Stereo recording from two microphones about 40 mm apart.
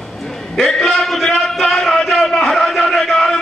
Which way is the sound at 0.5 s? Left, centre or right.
Centre.